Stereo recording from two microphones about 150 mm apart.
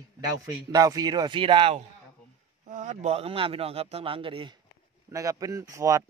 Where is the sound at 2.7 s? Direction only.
55° right (ahead or behind); by 4.5 s 35° right (ahead or behind).